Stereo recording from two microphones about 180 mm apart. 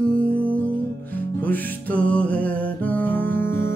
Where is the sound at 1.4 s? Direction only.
10° left (ahead or behind).